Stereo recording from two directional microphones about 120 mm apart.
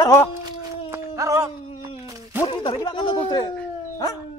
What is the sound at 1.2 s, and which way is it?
Speech, 25° right (ahead or behind).